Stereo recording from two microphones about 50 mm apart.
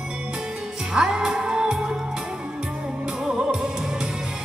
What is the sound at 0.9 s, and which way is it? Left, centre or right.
Music, centre.